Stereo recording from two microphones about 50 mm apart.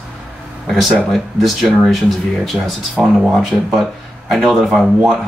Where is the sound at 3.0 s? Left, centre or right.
Centre.